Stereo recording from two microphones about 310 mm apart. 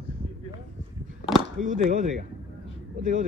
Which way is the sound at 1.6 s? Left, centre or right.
Right.